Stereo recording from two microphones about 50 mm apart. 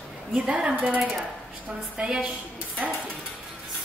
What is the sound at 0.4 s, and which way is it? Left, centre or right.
Speech, right.